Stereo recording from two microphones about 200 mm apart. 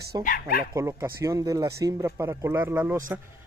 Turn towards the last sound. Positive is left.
turn(degrees=-10)  # may be behind; listen again after turning